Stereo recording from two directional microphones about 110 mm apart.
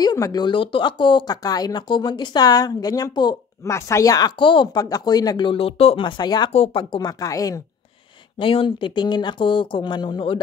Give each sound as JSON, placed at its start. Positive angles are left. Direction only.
{"t": 0.0, "sound": "speech", "side_deg": 35}
{"t": 3.6, "sound": "speech", "side_deg": 25}
{"t": 4.4, "sound": "speech", "side_deg": 50}
{"t": 4.8, "sound": "speech", "side_deg": 35}
{"t": 5.5, "sound": "speech", "side_deg": 55}
{"t": 6.5, "sound": "speech", "side_deg": 65}
{"t": 6.8, "sound": "speech", "side_deg": 45}
{"t": 8.4, "sound": "speech", "side_deg": 50}